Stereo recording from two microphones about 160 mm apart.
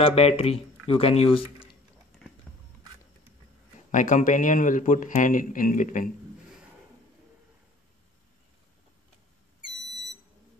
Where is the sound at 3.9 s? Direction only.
55° left (ahead or behind).